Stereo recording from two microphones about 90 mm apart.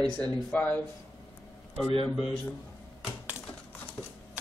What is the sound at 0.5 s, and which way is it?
Speech, 20° left (ahead or behind).